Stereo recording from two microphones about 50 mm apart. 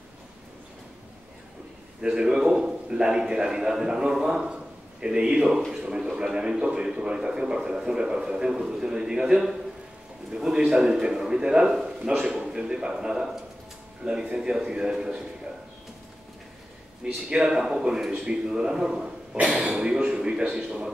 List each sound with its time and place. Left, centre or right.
2.0 s a sound: centre
2.9 s a man's voice: centre
17.0 s a man's voice: centre